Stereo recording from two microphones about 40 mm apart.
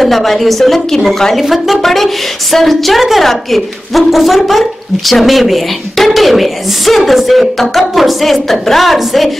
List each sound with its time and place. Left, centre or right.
0.0 s a woman's voice: centre